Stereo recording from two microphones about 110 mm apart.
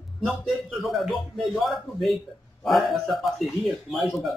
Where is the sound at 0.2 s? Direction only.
5° left (ahead or behind).